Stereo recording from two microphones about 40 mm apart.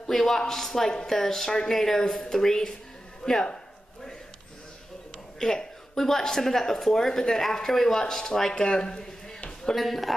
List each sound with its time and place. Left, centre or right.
0.2 s speech: centre
5.4 s speech: centre
9.8 s a man's voice: centre